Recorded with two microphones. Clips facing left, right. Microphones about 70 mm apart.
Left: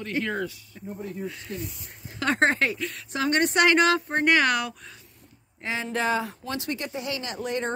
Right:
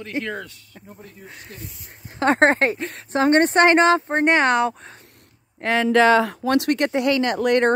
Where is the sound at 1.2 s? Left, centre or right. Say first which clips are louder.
Left 5 dB; right.